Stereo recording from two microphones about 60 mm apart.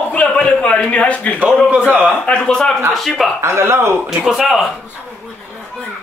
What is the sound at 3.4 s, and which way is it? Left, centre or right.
Speech, right.